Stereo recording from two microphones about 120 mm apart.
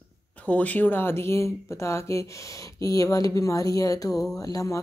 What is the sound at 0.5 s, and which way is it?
Speech, 10° left (ahead or behind).